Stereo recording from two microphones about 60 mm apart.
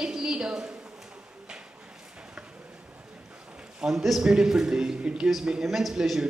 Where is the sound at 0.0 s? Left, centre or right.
Centre.